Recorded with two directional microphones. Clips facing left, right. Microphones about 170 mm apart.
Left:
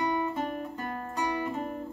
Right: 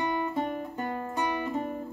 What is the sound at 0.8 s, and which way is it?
Music, 25° right (ahead or behind).